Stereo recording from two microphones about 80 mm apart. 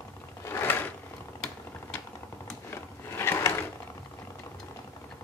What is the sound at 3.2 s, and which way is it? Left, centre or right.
Drawer open or close, left.